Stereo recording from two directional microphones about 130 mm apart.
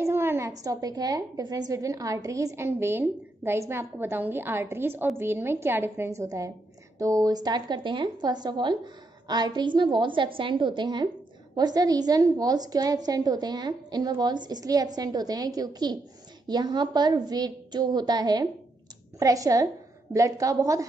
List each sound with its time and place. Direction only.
0.0 s a woman's voice: 20° right (ahead or behind)